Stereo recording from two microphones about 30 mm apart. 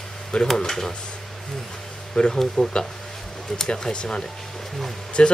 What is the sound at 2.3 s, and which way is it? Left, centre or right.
Speech, centre.